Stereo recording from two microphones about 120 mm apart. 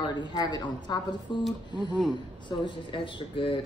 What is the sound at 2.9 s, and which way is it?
Speech, 45° left (ahead or behind).